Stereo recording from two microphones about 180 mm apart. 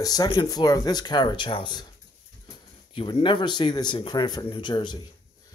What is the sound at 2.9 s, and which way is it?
Speech, 30° left (ahead or behind).